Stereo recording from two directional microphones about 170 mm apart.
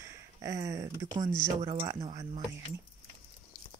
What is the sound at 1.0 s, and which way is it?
Speech, 25° right (ahead or behind).